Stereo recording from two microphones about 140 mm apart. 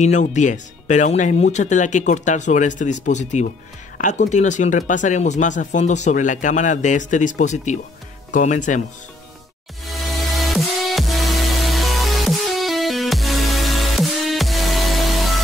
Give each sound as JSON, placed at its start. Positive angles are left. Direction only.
{"t": 0.0, "sound": "speech", "side_deg": 60}
{"t": 9.8, "sound": "music", "side_deg": 0}